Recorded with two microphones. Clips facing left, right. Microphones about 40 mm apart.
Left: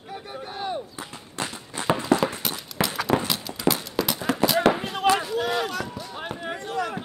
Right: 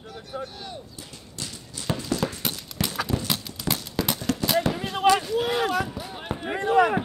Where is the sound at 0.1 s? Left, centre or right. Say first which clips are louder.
Left 1 dB; left.